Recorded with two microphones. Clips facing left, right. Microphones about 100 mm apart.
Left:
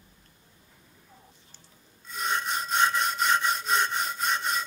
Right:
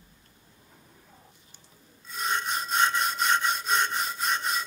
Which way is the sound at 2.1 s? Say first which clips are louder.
Even; centre (ahead or behind).